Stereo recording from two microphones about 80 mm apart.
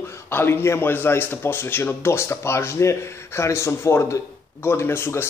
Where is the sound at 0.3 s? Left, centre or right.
Left.